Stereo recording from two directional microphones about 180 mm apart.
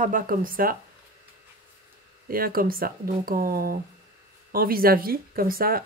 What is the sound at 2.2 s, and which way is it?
Speech, 55° right (ahead or behind).